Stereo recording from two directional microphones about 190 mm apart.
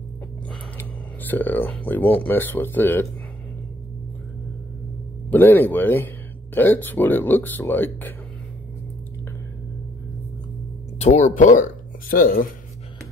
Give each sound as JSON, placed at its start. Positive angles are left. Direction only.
{"t": 0.5, "sound": "speech", "side_deg": 10}
{"t": 5.3, "sound": "speech", "side_deg": 10}
{"t": 11.0, "sound": "speech", "side_deg": 40}